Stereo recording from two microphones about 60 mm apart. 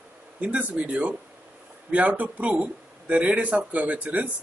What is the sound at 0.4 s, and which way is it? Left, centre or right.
A man's voice, right.